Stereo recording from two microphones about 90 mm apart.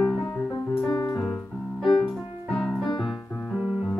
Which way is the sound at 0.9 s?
45° left (ahead or behind).